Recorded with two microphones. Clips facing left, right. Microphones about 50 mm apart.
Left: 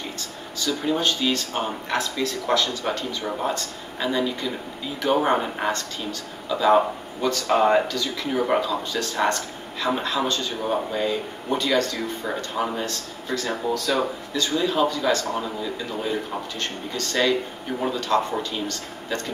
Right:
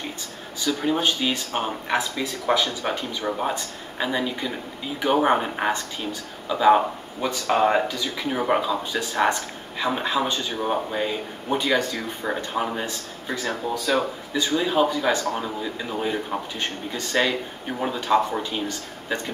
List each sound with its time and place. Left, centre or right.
0.6 s speech: centre